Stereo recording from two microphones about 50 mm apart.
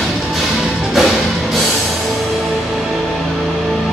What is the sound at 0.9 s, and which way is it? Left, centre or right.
Music, centre.